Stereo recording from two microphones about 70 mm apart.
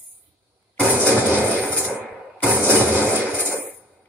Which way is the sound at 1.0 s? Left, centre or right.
Right.